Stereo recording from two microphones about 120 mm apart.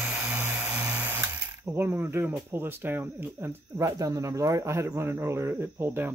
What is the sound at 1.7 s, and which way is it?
Speech, 15° right (ahead or behind).